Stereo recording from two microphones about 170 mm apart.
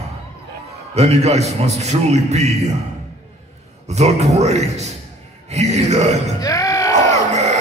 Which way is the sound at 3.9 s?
40° right (ahead or behind).